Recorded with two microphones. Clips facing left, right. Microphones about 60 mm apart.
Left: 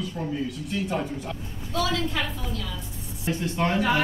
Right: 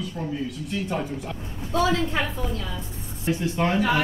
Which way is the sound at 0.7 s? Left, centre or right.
Centre.